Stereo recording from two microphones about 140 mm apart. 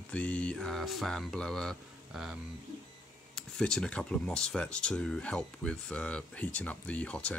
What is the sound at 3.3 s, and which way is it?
Speech, 5° left (ahead or behind).